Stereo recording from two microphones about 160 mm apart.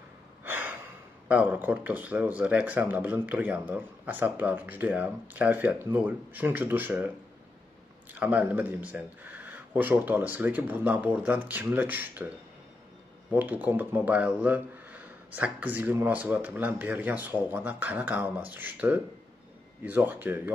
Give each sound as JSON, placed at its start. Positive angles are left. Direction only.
{"t": 0.4, "sound": "gasp", "side_deg": -10}
{"t": 1.3, "sound": "speech", "side_deg": -10}
{"t": 8.1, "sound": "speech", "side_deg": -10}
{"t": 13.3, "sound": "speech", "side_deg": -10}